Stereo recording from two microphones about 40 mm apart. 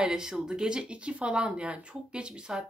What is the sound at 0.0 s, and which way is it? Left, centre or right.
Speech, centre.